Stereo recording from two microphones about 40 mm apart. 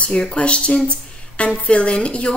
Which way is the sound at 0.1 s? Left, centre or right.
Left.